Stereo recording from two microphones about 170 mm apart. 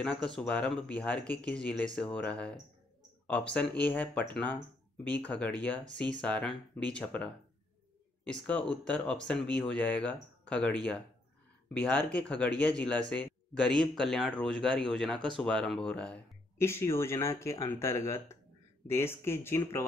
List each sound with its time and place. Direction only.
0.0 s speech: 5° left (ahead or behind)
16.5 s speech: 15° left (ahead or behind)